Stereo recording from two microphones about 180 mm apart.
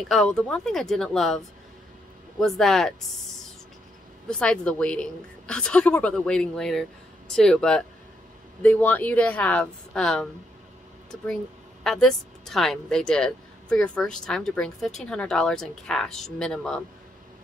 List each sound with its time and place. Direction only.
0.1 s speech: centre (ahead or behind)
2.4 s speech: centre (ahead or behind)
4.3 s a woman's voice: 5° left (ahead or behind)
11.8 s speech: centre (ahead or behind)